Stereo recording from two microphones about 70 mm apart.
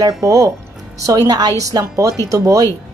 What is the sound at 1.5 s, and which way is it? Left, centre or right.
Speech, right.